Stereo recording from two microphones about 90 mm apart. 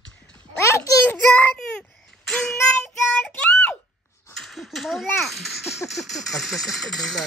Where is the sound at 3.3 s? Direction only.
20° left (ahead or behind).